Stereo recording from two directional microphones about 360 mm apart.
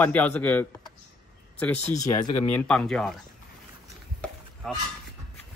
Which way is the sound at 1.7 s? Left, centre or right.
Centre.